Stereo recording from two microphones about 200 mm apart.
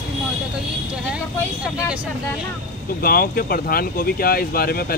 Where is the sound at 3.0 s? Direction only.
45° left (ahead or behind).